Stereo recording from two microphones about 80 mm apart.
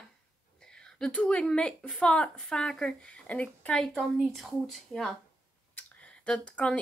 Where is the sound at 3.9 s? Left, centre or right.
Centre.